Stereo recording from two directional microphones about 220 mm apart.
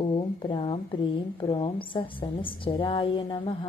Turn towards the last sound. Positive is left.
turn(degrees=20)  # may be behind; listen again after turning